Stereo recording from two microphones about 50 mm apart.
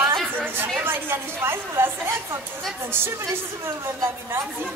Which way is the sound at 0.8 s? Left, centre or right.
Right.